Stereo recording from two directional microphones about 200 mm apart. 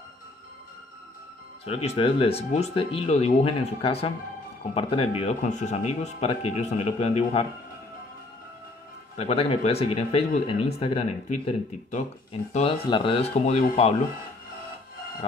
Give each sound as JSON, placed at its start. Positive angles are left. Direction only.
{"t": 1.7, "sound": "speech", "side_deg": 30}
{"t": 9.1, "sound": "speech", "side_deg": 30}